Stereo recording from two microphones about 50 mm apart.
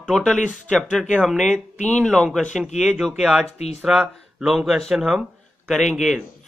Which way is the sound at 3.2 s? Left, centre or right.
Centre.